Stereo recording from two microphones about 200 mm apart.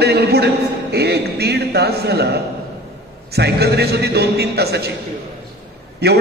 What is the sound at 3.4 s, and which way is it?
A man's voice, 55° right (ahead or behind).